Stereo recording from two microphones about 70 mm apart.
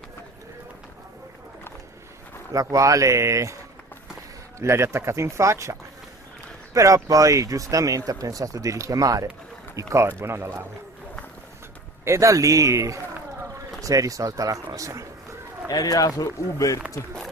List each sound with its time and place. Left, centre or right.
2.5 s speech: right
4.6 s speech: right
12.0 s speech: right
15.7 s speech: left
16.3 s speech: left